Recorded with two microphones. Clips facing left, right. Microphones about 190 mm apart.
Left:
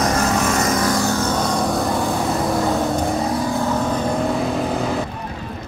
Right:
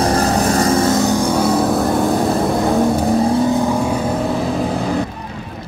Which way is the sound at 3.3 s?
15° right (ahead or behind).